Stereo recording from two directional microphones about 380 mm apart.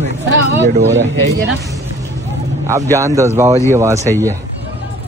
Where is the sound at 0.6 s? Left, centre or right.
Right.